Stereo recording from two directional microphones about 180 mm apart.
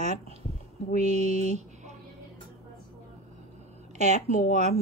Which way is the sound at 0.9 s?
40° right (ahead or behind).